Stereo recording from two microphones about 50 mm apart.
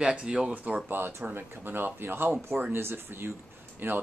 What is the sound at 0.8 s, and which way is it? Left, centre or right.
Speech, right.